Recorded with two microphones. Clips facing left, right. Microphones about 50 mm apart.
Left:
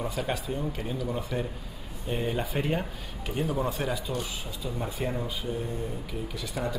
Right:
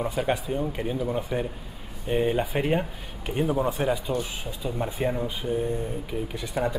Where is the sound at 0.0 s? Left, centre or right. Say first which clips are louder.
Right 5 dB; right.